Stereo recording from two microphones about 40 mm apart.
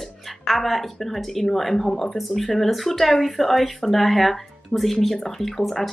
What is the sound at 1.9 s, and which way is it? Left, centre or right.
Speech, centre.